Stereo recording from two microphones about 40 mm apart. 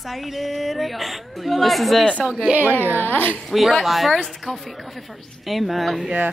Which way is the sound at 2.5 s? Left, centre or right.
Right.